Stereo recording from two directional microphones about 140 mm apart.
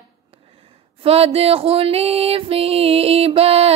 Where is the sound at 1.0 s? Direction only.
45° right (ahead or behind).